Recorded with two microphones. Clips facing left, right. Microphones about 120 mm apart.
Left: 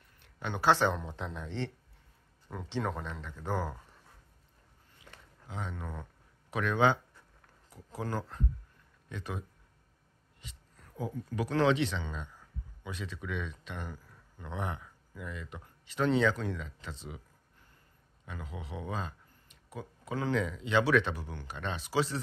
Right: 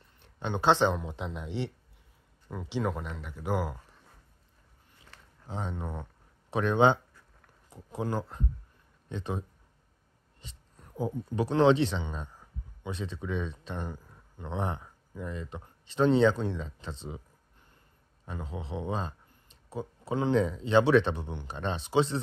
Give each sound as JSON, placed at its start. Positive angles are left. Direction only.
{"t": 0.2, "sound": "speech", "side_deg": -25}
{"t": 2.7, "sound": "speech", "side_deg": -10}
{"t": 5.5, "sound": "speech", "side_deg": -30}
{"t": 9.1, "sound": "speech", "side_deg": -30}
{"t": 10.4, "sound": "speech", "side_deg": -25}
{"t": 18.2, "sound": "speech", "side_deg": -30}